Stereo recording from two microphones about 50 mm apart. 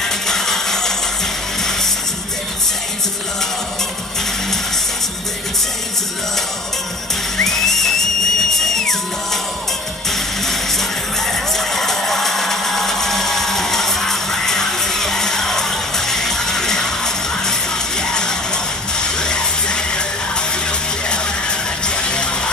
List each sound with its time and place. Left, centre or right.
0.0 s a sound: centre
7.4 s music: centre
10.4 s music: centre
21.8 s music: centre